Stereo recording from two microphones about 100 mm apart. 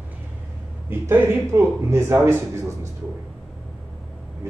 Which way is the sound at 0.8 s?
25° right (ahead or behind).